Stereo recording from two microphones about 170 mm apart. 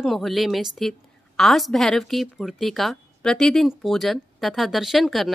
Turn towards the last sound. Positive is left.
turn(degrees=0)  # may be behind; listen again after turning